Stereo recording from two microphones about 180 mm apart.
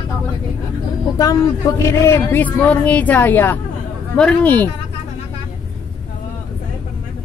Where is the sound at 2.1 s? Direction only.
10° left (ahead or behind).